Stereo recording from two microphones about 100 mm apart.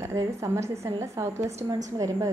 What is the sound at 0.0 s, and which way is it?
A woman's voice, 30° right (ahead or behind).